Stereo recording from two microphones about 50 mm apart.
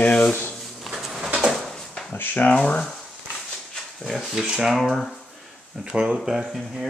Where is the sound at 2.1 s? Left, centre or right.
Left.